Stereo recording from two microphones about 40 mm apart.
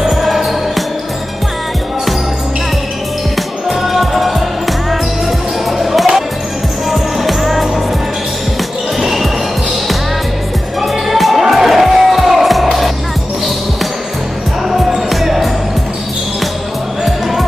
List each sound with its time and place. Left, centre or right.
0.1 s music: centre
3.3 s music: centre
5.7 s music: centre
9.0 s basketball bounce: centre
10.8 s music: centre
14.7 s music: centre
17.0 s music: centre